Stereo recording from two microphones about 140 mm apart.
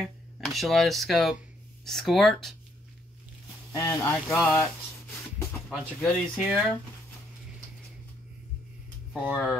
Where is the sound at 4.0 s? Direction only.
10° left (ahead or behind).